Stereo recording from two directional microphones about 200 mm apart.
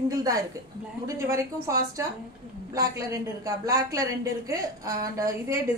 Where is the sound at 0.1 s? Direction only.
15° right (ahead or behind).